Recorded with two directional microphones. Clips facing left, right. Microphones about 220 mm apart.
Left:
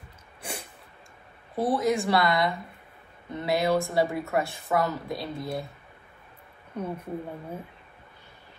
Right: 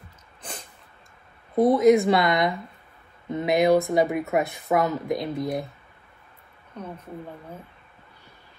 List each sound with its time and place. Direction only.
0.4 s a sound: 10° left (ahead or behind)
1.6 s speech: 20° right (ahead or behind)
6.7 s speech: 10° left (ahead or behind)